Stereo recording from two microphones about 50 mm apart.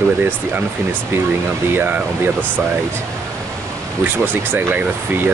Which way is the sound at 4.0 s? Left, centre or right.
Right.